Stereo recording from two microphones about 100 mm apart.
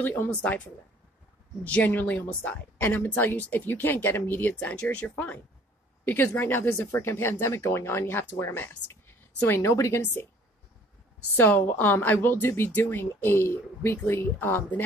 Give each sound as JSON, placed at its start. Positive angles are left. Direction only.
{"t": 0.0, "sound": "a woman's voice", "side_deg": 20}
{"t": 1.6, "sound": "a woman's voice", "side_deg": 15}
{"t": 11.3, "sound": "speech", "side_deg": 20}